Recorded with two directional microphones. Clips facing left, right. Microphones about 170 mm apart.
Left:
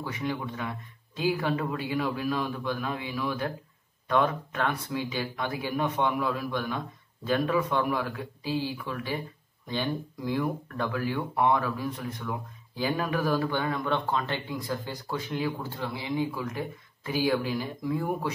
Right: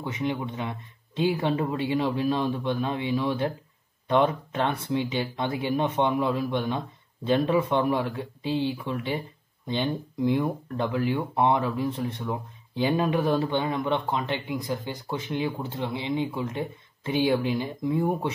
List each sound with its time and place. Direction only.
0.0 s speech: 20° right (ahead or behind)